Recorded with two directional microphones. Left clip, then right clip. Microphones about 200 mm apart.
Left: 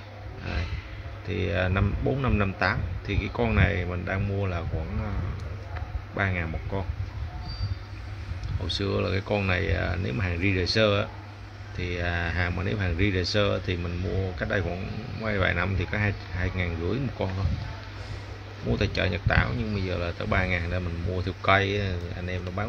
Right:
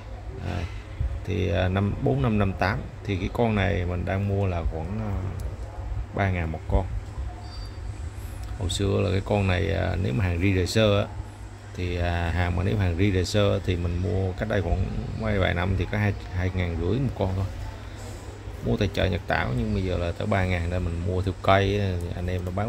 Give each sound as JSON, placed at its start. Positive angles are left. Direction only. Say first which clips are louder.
{"t": 1.3, "sound": "speech", "louder": "right 1 dB", "side_deg": -15}
{"t": 6.1, "sound": "speech", "louder": "right 1 dB", "side_deg": -15}
{"t": 8.6, "sound": "speech", "louder": "right 2 dB", "side_deg": -15}
{"t": 18.7, "sound": "speech", "louder": "right 1 dB", "side_deg": -15}